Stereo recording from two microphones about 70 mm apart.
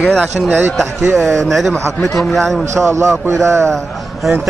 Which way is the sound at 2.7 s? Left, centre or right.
Right.